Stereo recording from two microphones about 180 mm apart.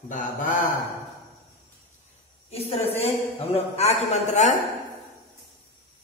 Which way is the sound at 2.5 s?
35° left (ahead or behind).